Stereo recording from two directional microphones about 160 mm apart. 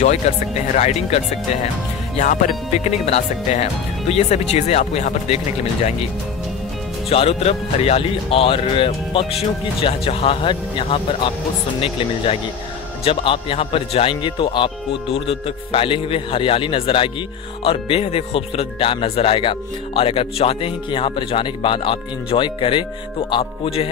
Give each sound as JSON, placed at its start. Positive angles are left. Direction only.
{"t": 0.2, "sound": "speech", "side_deg": 40}
{"t": 7.1, "sound": "speech", "side_deg": 40}